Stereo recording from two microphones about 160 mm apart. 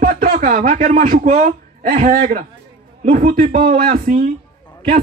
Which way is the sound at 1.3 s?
60° right (ahead or behind).